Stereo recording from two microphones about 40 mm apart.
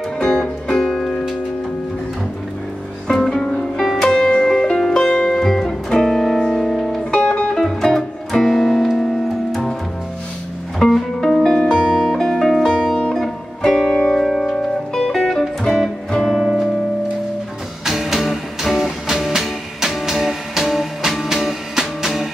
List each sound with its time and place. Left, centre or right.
0.2 s music: centre
3.1 s music: centre
5.0 s music: left
5.4 s music: centre
7.1 s music: left
7.6 s music: centre
10.8 s music: centre
11.6 s music: left
12.1 s music: centre
14.1 s music: centre
14.5 s music: centre
16.3 s music: centre
17.8 s music: centre